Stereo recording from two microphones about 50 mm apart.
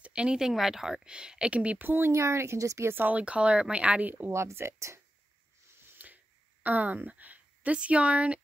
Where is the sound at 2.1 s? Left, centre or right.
Right.